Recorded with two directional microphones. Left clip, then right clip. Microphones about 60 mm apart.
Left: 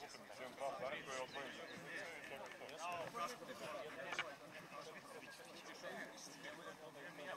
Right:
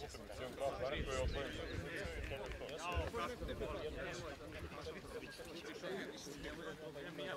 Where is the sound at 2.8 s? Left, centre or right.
Centre.